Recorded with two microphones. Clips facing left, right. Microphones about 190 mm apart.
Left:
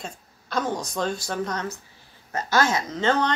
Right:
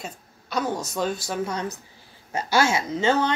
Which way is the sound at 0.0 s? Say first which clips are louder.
Even; 5° right (ahead or behind).